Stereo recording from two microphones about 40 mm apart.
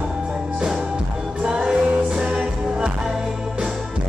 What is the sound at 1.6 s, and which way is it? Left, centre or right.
Music, centre.